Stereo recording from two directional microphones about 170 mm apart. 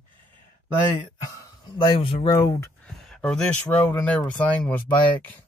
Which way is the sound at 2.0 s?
30° left (ahead or behind).